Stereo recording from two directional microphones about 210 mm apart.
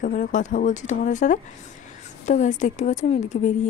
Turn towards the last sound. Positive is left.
turn(degrees=35)  # may be behind; listen again after turning